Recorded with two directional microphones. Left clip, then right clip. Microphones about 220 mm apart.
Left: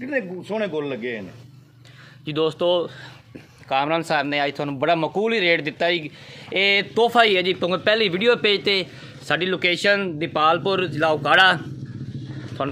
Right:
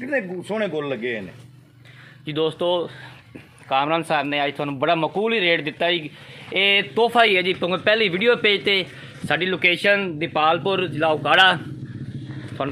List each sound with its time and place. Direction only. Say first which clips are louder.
0.0 s speech: right 1 dB; 50° right (ahead or behind)
2.2 s a man's voice: left 1 dB; 5° left (ahead or behind)